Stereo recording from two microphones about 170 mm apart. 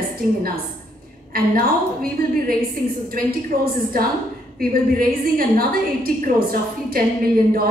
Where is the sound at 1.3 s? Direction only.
60° right (ahead or behind).